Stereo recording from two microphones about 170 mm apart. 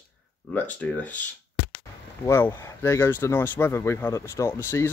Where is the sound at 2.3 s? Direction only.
15° left (ahead or behind).